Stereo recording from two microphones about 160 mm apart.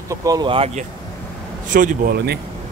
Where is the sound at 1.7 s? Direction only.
55° right (ahead or behind).